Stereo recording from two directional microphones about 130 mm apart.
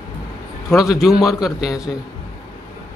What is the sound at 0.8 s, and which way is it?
Speech, centre (ahead or behind).